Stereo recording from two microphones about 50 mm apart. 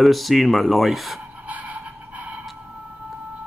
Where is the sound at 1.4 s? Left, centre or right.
Right.